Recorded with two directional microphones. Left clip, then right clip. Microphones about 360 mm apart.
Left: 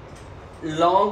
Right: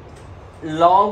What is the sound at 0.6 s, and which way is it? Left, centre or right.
Speech, centre.